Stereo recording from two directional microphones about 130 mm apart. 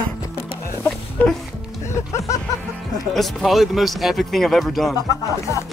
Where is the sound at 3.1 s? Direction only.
Centre (ahead or behind).